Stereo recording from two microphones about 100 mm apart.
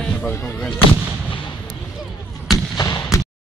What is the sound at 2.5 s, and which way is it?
Artillery fire, 35° left (ahead or behind).